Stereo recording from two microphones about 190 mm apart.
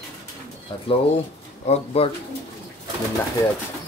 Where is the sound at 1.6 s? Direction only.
30° left (ahead or behind).